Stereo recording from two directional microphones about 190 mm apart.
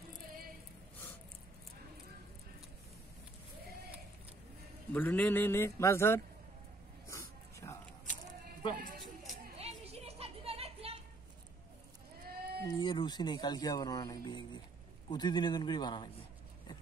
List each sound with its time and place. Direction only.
4.9 s a man's voice: 10° left (ahead or behind)
7.1 s dog: 15° left (ahead or behind)
9.6 s music: 35° right (ahead or behind)
12.3 s sheep: 55° right (ahead or behind)
12.7 s a man's voice: 25° left (ahead or behind)